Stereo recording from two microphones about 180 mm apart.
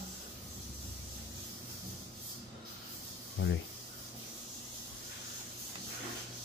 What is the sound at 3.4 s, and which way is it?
Speech, 90° left.